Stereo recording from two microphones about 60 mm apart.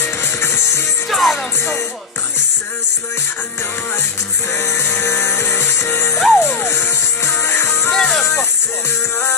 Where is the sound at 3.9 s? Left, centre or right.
Left.